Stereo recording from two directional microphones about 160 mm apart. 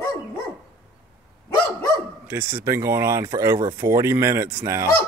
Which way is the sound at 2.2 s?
15° right (ahead or behind).